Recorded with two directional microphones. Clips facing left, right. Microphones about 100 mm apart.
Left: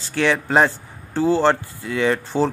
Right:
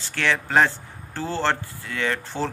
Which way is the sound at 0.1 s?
15° left (ahead or behind).